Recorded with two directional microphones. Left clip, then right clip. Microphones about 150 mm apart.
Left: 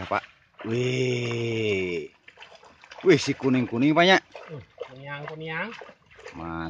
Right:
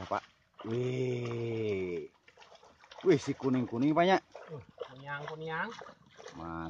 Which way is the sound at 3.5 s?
Centre (ahead or behind).